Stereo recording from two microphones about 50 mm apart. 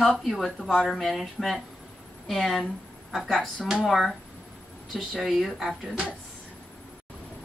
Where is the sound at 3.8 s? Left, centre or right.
Centre.